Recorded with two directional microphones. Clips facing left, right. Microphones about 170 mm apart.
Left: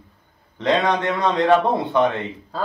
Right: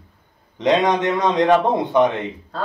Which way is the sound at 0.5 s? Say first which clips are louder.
Right 2 dB; 20° right (ahead or behind).